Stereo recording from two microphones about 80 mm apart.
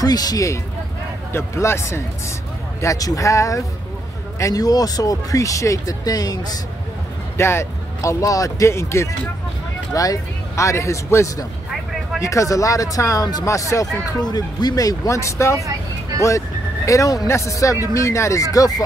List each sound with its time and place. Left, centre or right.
0.0 s speech: left
1.3 s speech: left
7.3 s speech: left
13.5 s speech: left
14.1 s speech: left